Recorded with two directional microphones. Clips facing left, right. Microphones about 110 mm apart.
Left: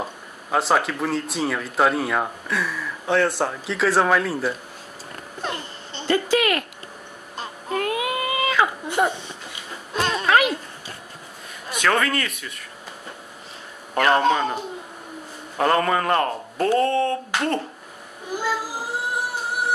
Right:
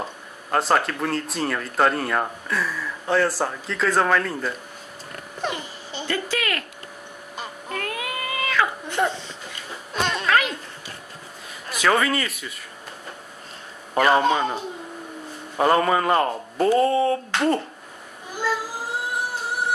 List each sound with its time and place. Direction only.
0.0 s speech: centre (ahead or behind)
5.4 s babbling: 5° right (ahead or behind)
6.2 s speech: 20° left (ahead or behind)
7.7 s baby cry: 20° left (ahead or behind)
9.9 s a sound: 5° left (ahead or behind)
10.2 s a sound: 20° left (ahead or behind)
11.7 s speech: 5° right (ahead or behind)
13.9 s speech: 5° right (ahead or behind)